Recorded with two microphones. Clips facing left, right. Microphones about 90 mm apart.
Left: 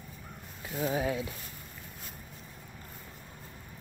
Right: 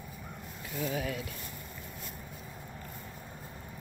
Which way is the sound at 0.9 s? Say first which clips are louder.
Left 5 dB; 25° left (ahead or behind).